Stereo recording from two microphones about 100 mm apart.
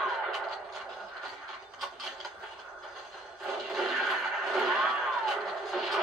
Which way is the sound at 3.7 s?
Centre (ahead or behind).